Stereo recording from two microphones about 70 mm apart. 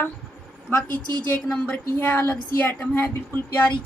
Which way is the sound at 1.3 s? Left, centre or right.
Centre.